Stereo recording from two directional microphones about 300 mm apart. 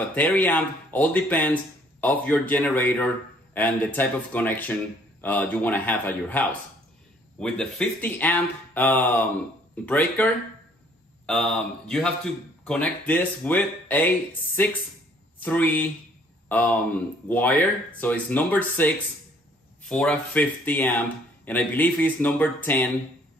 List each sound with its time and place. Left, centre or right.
0.1 s speech: centre